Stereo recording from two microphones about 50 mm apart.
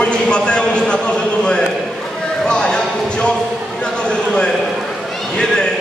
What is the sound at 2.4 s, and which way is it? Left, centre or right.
Clip-clop, centre.